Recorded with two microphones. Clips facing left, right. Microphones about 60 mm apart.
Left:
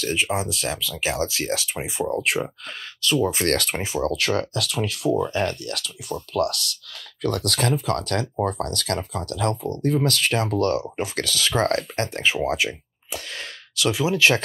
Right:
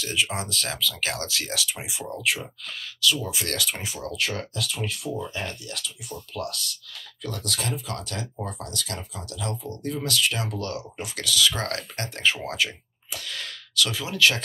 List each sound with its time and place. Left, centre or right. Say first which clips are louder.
0.0 s speech: left 3 dB; left
0.3 s speech: left 5 dB; centre; by 3.7 s left
3.7 s speech: left 8 dB; left
4.0 s speech: left 7 dB; left
12.3 s speech: left 2 dB; centre